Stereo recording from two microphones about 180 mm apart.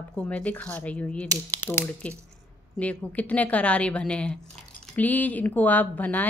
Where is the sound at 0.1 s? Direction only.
5° left (ahead or behind).